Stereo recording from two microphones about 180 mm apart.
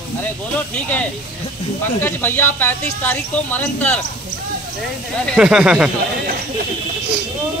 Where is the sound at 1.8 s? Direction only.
10° left (ahead or behind).